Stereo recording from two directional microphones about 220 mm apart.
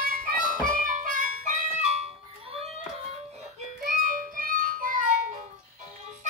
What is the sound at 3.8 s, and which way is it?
Music, 40° right (ahead or behind).